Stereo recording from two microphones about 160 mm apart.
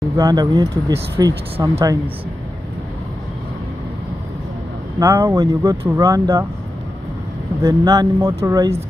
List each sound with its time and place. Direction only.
0.2 s speech: 25° right (ahead or behind)
4.9 s speech: 20° right (ahead or behind)
7.6 s speech: 25° right (ahead or behind)